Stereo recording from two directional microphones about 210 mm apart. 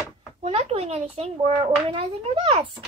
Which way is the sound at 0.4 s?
25° right (ahead or behind).